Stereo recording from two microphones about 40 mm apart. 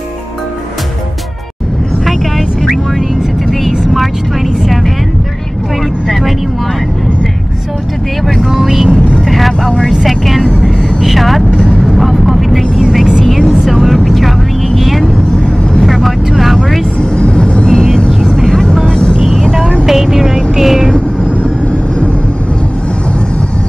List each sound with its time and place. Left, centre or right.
2.0 s vehicle: centre
8.5 s vehicle: centre
9.9 s vehicle: centre
11.5 s vehicle: left
11.9 s vehicle: centre
17.0 s vehicle: left
19.9 s vehicle: centre